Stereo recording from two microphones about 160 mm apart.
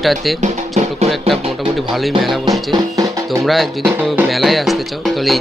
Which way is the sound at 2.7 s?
20° right (ahead or behind).